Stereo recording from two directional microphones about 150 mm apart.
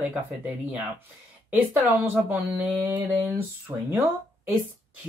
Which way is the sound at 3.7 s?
20° right (ahead or behind).